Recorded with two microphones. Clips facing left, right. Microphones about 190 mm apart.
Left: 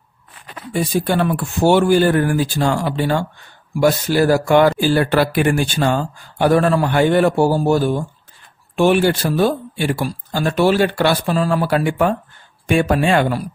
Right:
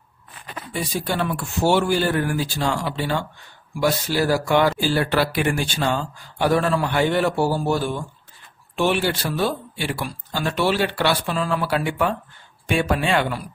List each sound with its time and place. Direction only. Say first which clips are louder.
0.9 s speech: left 6 dB; 50° left (ahead or behind)